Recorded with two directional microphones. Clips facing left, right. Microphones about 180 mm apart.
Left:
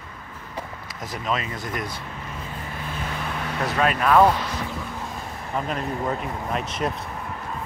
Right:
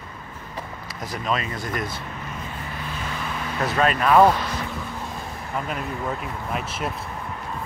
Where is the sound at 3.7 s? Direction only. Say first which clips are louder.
Right 1 dB; 10° left (ahead or behind).